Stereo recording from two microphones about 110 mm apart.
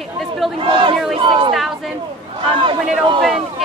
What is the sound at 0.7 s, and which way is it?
Speech, 50° right (ahead or behind).